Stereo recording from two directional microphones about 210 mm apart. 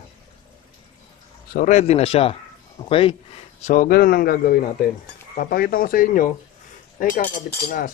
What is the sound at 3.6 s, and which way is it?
Speech, 40° left (ahead or behind).